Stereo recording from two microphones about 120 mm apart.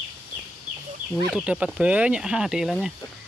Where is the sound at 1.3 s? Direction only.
10° right (ahead or behind).